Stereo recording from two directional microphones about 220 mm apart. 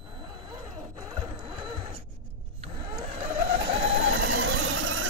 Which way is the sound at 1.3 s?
20° right (ahead or behind).